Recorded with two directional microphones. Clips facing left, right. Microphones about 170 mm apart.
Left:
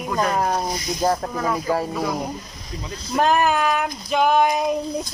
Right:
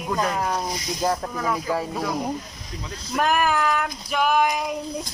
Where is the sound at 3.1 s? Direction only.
30° left (ahead or behind).